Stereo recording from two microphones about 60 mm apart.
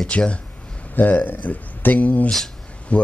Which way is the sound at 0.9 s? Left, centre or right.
Left.